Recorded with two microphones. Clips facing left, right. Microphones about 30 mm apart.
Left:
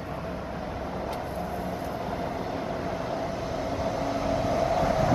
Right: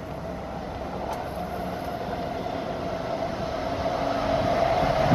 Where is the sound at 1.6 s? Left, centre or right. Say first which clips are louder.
Right 1 dB; centre.